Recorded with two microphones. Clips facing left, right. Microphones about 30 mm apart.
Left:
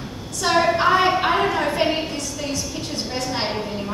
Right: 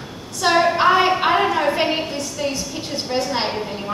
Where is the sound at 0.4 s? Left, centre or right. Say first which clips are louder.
Right 2 dB; centre.